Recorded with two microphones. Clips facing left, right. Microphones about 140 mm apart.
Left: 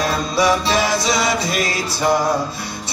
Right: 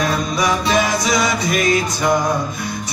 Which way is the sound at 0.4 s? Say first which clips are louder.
Left 2 dB; 30° left (ahead or behind).